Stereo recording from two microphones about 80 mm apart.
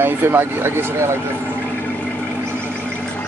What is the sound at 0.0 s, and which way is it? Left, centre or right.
Speech, right.